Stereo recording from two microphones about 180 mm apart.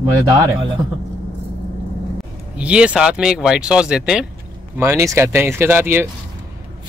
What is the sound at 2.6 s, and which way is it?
Speech, 5° right (ahead or behind).